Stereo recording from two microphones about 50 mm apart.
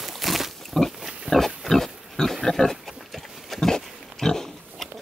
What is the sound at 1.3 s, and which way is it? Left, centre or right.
Pig, centre.